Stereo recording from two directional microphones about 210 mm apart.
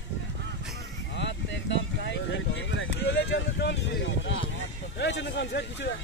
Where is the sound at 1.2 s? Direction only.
55° left (ahead or behind).